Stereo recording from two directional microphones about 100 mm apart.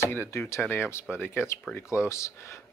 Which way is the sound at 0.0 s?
25° left (ahead or behind).